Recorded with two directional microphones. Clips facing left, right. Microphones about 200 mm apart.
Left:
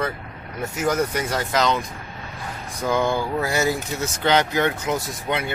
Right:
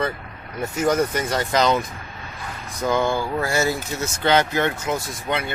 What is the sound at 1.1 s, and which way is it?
Speech, 5° left (ahead or behind).